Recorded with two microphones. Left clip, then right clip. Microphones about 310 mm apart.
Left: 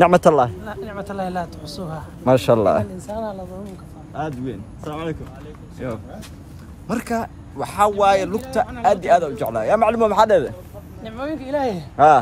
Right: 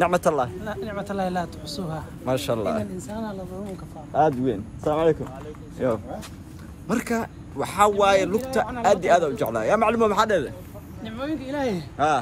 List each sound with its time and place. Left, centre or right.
0.0 s speech: left
0.7 s a man's voice: centre
2.2 s a man's voice: left
3.1 s a man's voice: centre
4.1 s speech: centre
6.9 s a man's voice: centre